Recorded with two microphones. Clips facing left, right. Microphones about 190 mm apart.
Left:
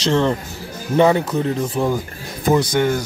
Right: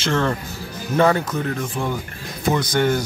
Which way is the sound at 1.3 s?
30° left (ahead or behind).